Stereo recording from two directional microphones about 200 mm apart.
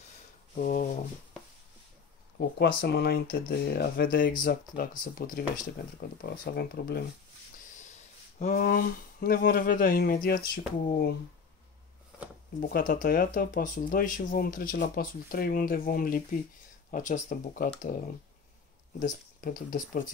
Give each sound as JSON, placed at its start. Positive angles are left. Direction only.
{"t": 0.6, "sound": "speech", "side_deg": 40}
{"t": 2.8, "sound": "speech", "side_deg": 50}
{"t": 7.7, "sound": "speech", "side_deg": 35}
{"t": 12.5, "sound": "speech", "side_deg": 45}
{"t": 18.9, "sound": "speech", "side_deg": 40}